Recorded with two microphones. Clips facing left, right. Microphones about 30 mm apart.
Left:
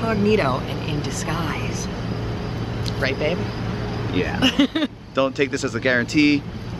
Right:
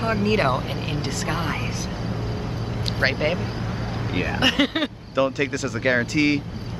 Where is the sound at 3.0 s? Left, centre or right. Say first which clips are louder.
Even; centre.